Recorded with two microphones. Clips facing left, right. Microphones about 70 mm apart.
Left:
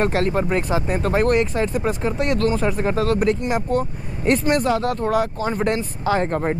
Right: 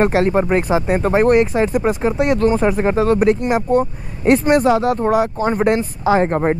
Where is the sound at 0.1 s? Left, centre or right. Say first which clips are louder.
Right 5 dB; centre.